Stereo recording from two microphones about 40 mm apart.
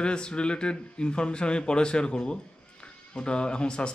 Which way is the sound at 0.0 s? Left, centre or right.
Left.